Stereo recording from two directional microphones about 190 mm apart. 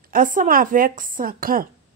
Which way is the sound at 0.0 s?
45° right (ahead or behind).